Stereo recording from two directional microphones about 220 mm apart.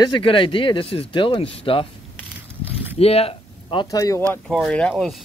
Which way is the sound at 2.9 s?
25° left (ahead or behind).